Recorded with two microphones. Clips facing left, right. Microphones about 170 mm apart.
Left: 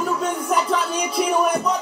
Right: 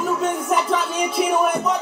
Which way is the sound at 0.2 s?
Centre (ahead or behind).